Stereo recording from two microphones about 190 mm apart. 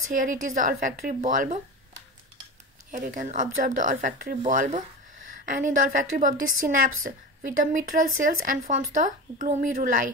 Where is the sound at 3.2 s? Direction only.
45° right (ahead or behind).